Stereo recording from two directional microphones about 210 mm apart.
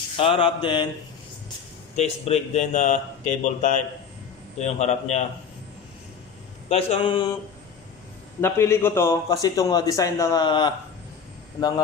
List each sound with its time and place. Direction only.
0.2 s mantra: 25° left (ahead or behind)
2.0 s speech: 30° left (ahead or behind)
6.7 s mantra: 30° left (ahead or behind)
8.4 s a man's voice: 10° left (ahead or behind)